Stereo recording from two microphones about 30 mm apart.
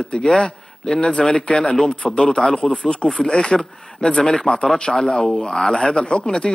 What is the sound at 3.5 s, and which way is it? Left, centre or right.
Speech, centre.